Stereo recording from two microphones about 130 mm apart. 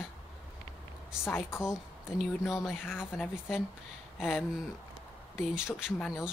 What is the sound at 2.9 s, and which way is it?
Speech, 15° left (ahead or behind).